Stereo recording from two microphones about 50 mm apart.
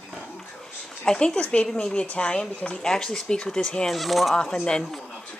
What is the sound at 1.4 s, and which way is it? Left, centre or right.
Speech, left.